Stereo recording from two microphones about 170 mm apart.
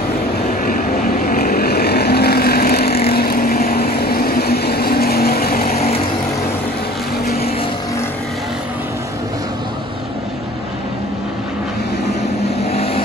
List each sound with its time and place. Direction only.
0.7 s vehicle: 55° left (ahead or behind)
12.7 s vehicle: 35° left (ahead or behind)